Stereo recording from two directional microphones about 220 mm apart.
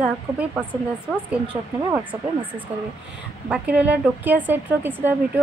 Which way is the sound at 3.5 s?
5° right (ahead or behind).